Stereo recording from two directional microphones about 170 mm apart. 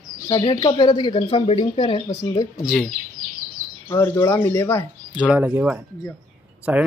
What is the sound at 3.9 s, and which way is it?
Speech, 15° left (ahead or behind).